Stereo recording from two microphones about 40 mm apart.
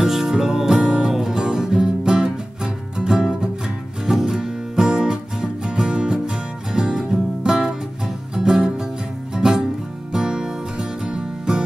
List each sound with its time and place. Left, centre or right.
0.0 s music: centre